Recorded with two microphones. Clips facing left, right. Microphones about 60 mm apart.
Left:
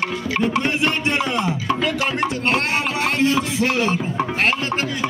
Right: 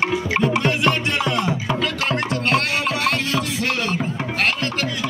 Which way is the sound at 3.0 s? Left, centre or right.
Left.